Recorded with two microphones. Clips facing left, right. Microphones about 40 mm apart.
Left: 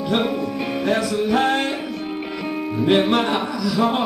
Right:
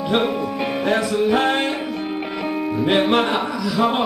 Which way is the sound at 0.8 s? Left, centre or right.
Centre.